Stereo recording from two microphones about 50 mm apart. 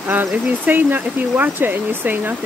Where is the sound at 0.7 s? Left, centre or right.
Right.